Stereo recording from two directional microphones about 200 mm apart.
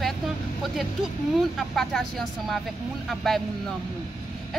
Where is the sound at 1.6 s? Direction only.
Centre (ahead or behind).